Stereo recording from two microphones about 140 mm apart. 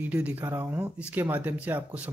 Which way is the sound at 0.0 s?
10° right (ahead or behind).